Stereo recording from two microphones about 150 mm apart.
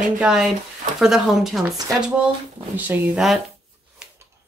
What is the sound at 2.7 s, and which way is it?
Speech, 10° right (ahead or behind).